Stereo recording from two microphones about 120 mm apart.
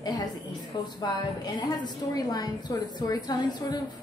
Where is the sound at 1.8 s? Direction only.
35° left (ahead or behind).